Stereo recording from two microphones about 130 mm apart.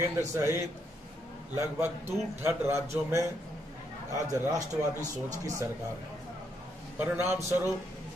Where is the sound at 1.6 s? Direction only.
15° right (ahead or behind).